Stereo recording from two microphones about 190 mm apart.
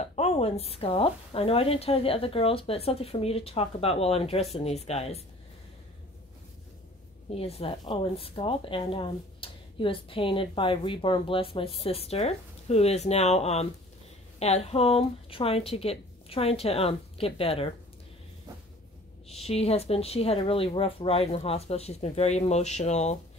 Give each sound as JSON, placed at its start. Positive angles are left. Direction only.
{"t": 0.0, "sound": "a woman's voice", "side_deg": 35}
{"t": 7.2, "sound": "a woman's voice", "side_deg": 30}
{"t": 19.4, "sound": "a woman's voice", "side_deg": 30}